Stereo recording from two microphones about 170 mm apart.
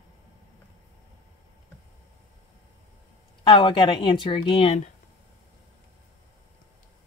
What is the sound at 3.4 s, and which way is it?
A woman's voice, 30° left (ahead or behind).